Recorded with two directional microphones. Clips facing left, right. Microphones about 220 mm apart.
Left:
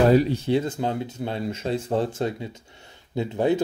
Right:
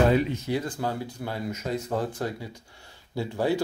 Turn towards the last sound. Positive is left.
turn(degrees=20)  # may be behind; listen again after turning